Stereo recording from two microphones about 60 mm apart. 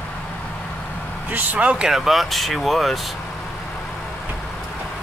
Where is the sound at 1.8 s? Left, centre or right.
Centre.